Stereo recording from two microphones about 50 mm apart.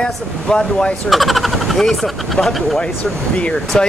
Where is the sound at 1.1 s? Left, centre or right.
Centre.